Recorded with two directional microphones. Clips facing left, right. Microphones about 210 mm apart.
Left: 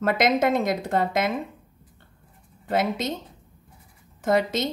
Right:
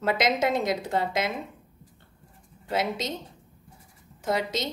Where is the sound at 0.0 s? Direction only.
50° left (ahead or behind).